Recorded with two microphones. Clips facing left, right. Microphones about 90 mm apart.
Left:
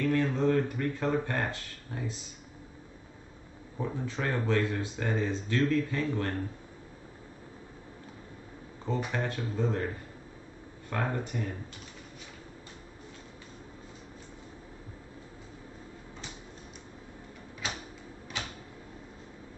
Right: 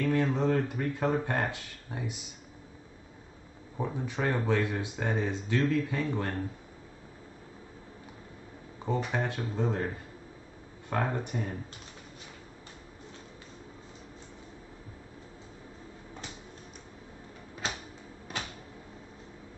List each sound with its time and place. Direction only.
0.0 s speech: 15° right (ahead or behind)
3.7 s speech: 15° right (ahead or behind)
8.8 s speech: 15° right (ahead or behind)
10.9 s speech: 20° right (ahead or behind)